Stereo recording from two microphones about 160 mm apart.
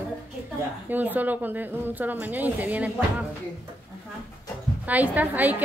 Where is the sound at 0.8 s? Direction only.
10° right (ahead or behind).